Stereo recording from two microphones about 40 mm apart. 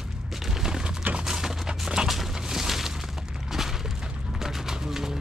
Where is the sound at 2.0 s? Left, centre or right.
Centre.